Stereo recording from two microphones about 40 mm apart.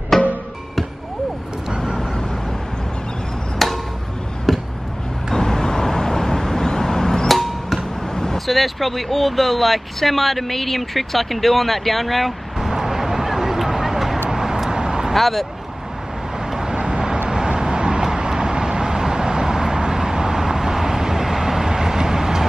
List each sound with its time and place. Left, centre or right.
0.1 s music: centre
3.5 s a sound: centre
5.3 s vehicle: centre
7.2 s music: centre
8.1 s vehicle: centre
8.5 s speech: centre
14.3 s vehicle: centre
15.1 s speech: centre
16.4 s vehicle: centre